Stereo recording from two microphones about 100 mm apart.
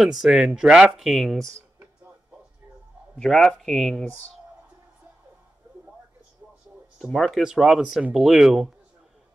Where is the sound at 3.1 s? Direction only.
5° left (ahead or behind).